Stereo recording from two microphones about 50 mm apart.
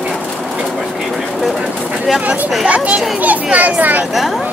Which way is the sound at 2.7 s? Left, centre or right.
Right.